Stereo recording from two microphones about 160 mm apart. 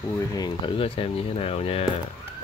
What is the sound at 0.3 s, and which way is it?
Speech, 25° left (ahead or behind).